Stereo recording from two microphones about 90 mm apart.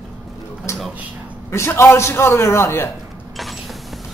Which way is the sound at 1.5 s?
30° left (ahead or behind).